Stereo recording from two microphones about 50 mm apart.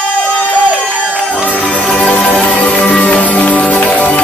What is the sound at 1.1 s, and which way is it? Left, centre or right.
Music, right.